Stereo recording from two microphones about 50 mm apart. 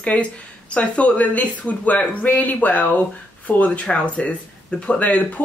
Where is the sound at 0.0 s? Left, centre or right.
Left.